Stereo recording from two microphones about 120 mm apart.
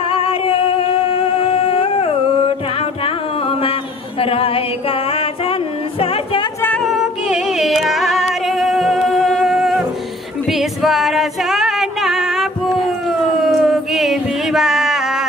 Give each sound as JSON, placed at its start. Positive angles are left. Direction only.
{"t": 0.1, "sound": "music", "side_deg": 50}
{"t": 4.2, "sound": "music", "side_deg": 50}
{"t": 6.8, "sound": "music", "side_deg": 0}
{"t": 13.4, "sound": "a sound", "side_deg": 0}